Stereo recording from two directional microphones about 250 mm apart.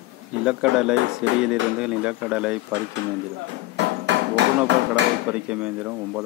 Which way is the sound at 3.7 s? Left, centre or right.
Right.